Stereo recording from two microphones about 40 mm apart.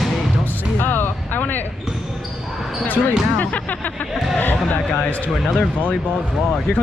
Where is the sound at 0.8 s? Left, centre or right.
Left.